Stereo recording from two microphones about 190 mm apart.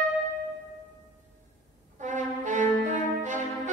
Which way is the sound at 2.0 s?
40° right (ahead or behind).